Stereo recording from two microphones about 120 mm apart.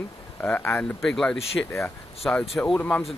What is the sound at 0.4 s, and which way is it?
Speech, 15° left (ahead or behind).